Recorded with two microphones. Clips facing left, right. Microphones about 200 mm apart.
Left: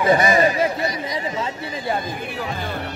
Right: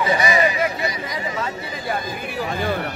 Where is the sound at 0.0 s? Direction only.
50° left (ahead or behind).